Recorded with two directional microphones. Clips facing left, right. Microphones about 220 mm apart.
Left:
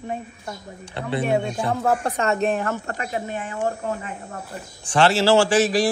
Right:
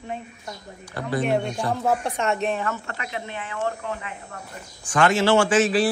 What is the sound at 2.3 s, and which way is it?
Speech, 45° left (ahead or behind).